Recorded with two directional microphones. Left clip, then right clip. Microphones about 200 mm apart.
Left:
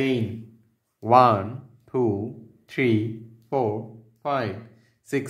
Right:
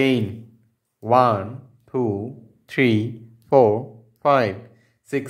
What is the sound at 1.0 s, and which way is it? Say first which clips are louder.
Speech: even; 5° right (ahead or behind).